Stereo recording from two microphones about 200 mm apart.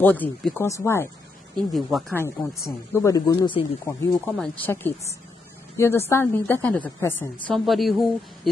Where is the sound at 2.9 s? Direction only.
15° left (ahead or behind).